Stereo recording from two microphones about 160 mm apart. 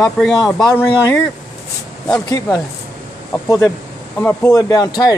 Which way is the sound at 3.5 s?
25° left (ahead or behind).